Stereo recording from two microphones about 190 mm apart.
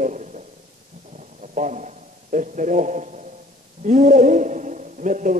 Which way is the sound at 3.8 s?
40° right (ahead or behind).